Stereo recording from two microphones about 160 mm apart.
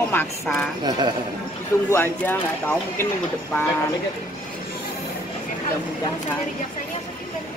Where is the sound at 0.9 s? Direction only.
30° right (ahead or behind).